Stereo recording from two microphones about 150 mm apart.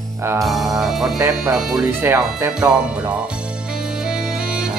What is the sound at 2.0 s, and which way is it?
Speech, 15° right (ahead or behind).